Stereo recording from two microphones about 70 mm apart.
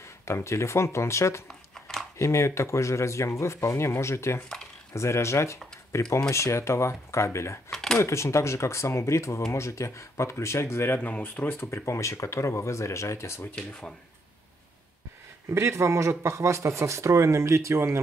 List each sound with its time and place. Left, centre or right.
0.2 s speech: left
7.7 s a sound: centre
8.0 s speech: left
11.0 s speech: left
11.7 s speech: left
13.6 s speech: centre
15.5 s speech: right